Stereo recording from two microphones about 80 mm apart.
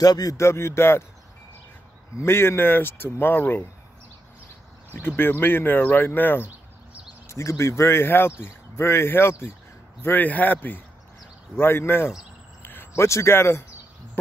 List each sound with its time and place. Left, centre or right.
0.0 s speech: left
0.4 s speech: left
2.1 s speech: left
4.9 s speech: left
7.2 s speech: left